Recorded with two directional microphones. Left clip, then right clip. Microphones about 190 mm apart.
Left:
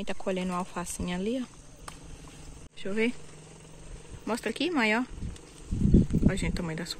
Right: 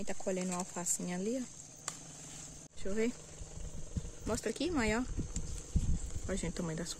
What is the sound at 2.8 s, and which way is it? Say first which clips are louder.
Speech: left 6 dB; 5° left (ahead or behind).